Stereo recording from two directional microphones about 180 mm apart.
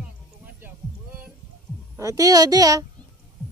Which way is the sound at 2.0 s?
20° right (ahead or behind).